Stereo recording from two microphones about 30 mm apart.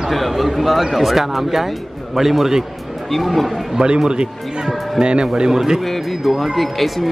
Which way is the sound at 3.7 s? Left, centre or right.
Right.